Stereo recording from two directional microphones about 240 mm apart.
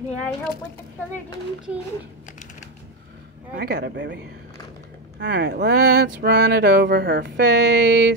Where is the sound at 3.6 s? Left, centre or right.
Right.